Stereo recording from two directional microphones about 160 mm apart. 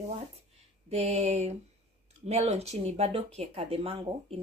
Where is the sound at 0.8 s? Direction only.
40° right (ahead or behind).